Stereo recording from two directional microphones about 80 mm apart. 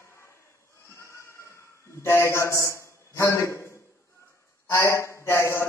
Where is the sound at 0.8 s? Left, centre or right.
Left.